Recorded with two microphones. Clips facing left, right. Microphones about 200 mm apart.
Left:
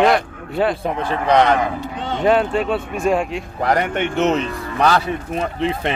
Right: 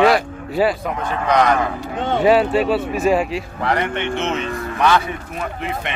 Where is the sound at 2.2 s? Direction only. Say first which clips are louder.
Right 1 dB; 5° right (ahead or behind).